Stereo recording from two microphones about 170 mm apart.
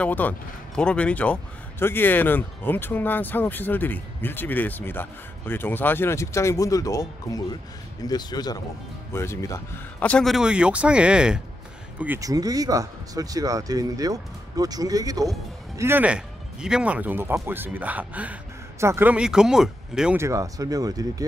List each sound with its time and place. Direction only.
0.0 s speech: 10° left (ahead or behind)
12.0 s speech: 15° right (ahead or behind)
20.2 s speech: 20° right (ahead or behind)